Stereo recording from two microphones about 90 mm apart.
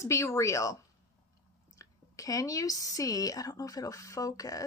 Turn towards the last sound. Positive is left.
turn(degrees=40)  # may be behind; listen again after turning